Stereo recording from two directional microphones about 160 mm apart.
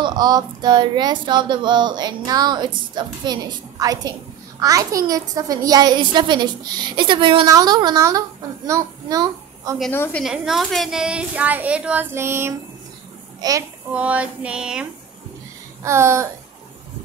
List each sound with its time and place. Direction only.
0.0 s a child's voice: 25° right (ahead or behind)
10.2 s a woman's voice: 5° right (ahead or behind); by 13.7 s 20° right (ahead or behind)
13.9 s a woman's voice: 10° right (ahead or behind)
15.8 s a woman's voice: 15° right (ahead or behind)